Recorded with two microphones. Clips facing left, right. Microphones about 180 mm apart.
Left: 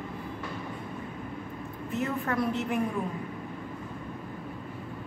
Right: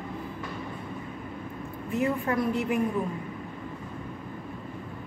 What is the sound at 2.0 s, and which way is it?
Speech, 10° right (ahead or behind).